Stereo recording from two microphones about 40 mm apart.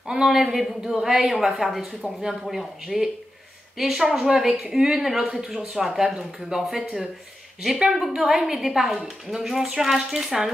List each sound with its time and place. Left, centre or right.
0.0 s a woman's voice: centre